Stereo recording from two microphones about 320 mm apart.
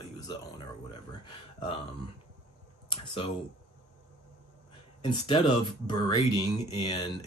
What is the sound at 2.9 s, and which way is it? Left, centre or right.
Speech, centre.